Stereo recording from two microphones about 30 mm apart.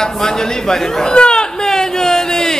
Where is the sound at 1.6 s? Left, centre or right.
Centre.